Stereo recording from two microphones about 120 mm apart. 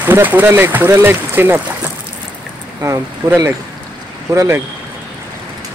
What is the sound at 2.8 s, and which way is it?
Speech, 25° right (ahead or behind).